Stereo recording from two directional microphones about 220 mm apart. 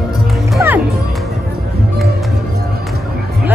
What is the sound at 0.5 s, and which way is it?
Music, 10° right (ahead or behind).